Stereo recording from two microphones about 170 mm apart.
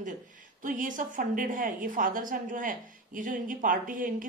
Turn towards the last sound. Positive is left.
turn(degrees=-50)  # may be behind; listen again after turning